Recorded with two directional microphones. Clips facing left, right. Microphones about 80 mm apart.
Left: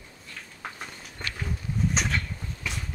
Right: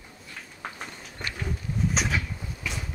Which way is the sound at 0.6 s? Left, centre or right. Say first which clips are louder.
Right 1 dB; centre.